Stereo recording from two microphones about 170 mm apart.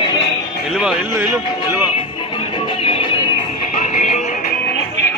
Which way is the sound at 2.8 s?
35° left (ahead or behind).